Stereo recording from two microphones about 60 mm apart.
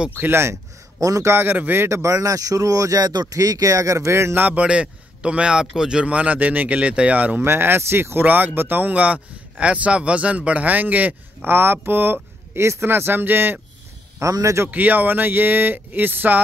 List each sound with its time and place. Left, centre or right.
0.2 s speech: right
1.0 s speech: right
1.3 s a man's voice: right
1.9 s speech: right
2.2 s speech: right
4.4 s speech: right
4.6 s speech: centre
7.4 s a man's voice: right
8.3 s a man's voice: right
14.2 s speech: right
14.7 s a man's voice: right